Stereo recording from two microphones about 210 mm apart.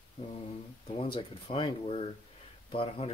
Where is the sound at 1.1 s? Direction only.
25° left (ahead or behind).